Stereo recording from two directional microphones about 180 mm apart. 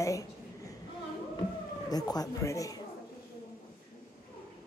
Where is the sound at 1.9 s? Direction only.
20° left (ahead or behind).